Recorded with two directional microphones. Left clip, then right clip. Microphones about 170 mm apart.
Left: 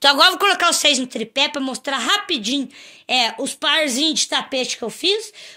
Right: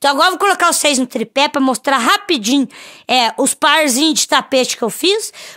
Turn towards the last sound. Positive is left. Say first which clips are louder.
# right 5 dB
turn(degrees=-70)  # may be behind; listen again after turning